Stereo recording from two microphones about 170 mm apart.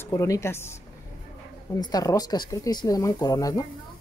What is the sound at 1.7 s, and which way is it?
Speech, 20° left (ahead or behind).